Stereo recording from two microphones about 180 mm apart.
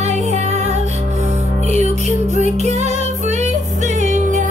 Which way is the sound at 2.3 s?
40° right (ahead or behind).